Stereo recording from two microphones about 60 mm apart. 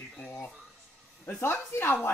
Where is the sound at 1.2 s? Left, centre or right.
Left.